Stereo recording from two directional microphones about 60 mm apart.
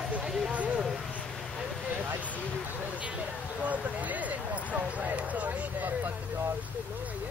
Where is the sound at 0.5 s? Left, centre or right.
Right.